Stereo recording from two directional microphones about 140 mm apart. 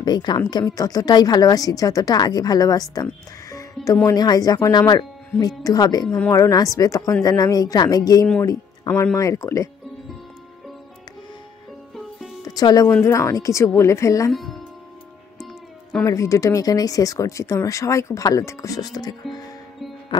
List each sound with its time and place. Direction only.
0.0 s a woman's voice: 30° left (ahead or behind)
6.0 s speech: 10° left (ahead or behind)
6.3 s a woman's voice: 25° left (ahead or behind)
12.4 s a woman's voice: 25° left (ahead or behind)
14.3 s speech: centre (ahead or behind)
16.0 s a woman's voice: 25° left (ahead or behind)